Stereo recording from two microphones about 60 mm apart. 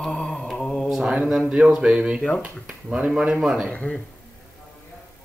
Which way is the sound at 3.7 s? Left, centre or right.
Centre.